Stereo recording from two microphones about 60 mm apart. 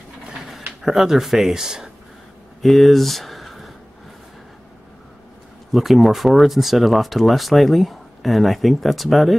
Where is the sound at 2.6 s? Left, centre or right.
Centre.